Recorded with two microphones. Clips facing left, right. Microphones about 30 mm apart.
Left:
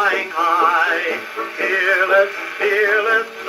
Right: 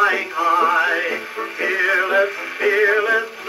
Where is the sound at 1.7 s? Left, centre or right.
Centre.